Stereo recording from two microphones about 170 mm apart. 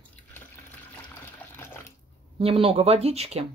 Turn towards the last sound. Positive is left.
turn(degrees=-40)  # may be behind; listen again after turning